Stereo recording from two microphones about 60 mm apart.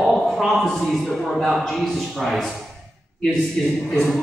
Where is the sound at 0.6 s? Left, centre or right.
Centre.